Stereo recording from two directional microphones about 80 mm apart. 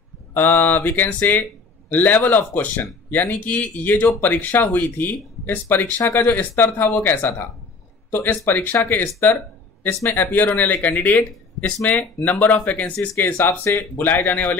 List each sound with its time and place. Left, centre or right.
0.3 s speech: left